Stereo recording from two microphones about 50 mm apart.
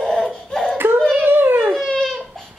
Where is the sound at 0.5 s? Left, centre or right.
Centre.